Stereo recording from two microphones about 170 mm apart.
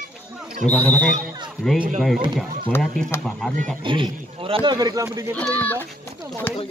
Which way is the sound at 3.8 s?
30° right (ahead or behind).